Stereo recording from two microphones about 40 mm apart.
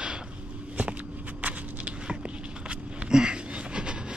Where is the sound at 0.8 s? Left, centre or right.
Right.